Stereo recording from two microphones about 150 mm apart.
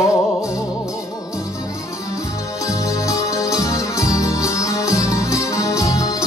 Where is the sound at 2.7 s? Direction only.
20° left (ahead or behind).